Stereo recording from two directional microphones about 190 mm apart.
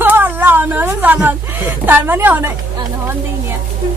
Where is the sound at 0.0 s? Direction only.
10° right (ahead or behind).